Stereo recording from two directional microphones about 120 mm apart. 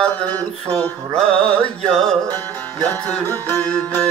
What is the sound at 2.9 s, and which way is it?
Music, 15° left (ahead or behind).